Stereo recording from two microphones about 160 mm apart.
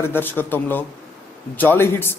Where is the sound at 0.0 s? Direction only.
15° left (ahead or behind).